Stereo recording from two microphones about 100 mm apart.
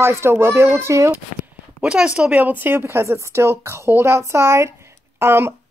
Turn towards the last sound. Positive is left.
turn(degrees=-25)  # may be behind; listen again after turning